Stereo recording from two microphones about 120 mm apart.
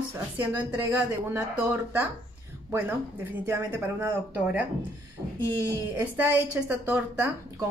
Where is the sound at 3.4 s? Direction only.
20° right (ahead or behind).